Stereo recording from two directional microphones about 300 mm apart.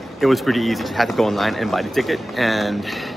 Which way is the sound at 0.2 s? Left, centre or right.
Centre.